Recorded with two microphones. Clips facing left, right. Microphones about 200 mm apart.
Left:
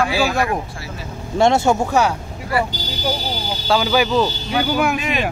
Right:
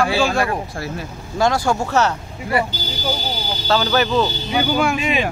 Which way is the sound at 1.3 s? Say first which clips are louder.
Left 3 dB; 25° left (ahead or behind).